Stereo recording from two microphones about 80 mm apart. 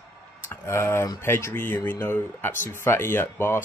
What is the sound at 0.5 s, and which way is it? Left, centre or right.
Speech, left.